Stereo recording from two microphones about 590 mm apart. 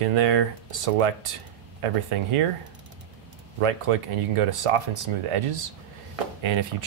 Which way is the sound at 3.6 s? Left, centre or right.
Right.